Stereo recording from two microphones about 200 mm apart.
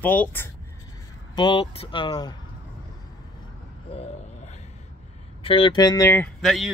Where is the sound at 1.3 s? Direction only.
25° left (ahead or behind).